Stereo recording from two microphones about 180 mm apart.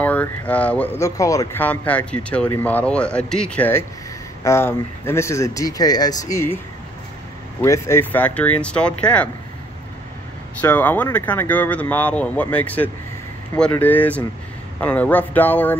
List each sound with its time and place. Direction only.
0.0 s speech: 10° left (ahead or behind)
7.6 s speech: 15° left (ahead or behind)
10.6 s speech: 10° left (ahead or behind)